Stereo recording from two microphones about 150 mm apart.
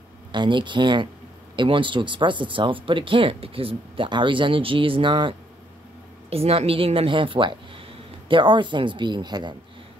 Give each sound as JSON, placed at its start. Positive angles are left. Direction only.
{"t": 0.3, "sound": "speech", "side_deg": -30}
{"t": 6.3, "sound": "a woman's voice", "side_deg": -40}